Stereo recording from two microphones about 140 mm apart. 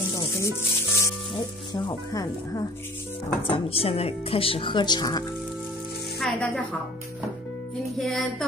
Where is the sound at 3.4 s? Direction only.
40° left (ahead or behind).